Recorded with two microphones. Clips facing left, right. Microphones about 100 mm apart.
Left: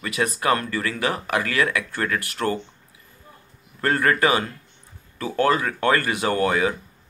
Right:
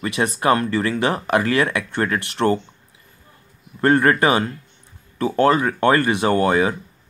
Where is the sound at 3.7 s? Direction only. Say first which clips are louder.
Right 5 dB; 25° right (ahead or behind).